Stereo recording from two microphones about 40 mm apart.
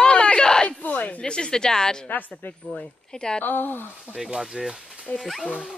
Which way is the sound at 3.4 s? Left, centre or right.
Left.